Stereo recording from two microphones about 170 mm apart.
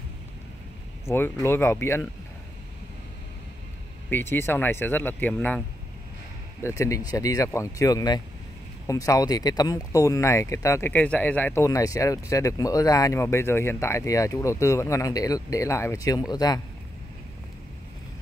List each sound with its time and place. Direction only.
1.0 s speech: 15° left (ahead or behind)
4.1 s speech: 15° left (ahead or behind)
6.6 s speech: 20° left (ahead or behind)